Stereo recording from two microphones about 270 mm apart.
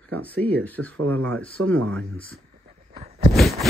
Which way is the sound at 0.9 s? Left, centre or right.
Right.